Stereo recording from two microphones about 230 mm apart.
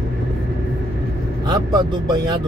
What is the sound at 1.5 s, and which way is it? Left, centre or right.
Speech, centre.